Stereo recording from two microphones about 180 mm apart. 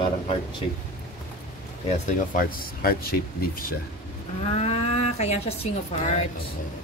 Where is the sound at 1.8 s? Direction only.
45° left (ahead or behind).